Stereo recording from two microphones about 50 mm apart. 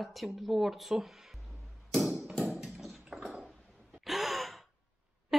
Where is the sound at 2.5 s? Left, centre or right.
Centre.